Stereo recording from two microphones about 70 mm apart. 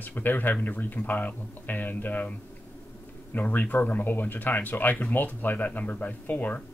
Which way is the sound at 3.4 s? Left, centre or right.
Left.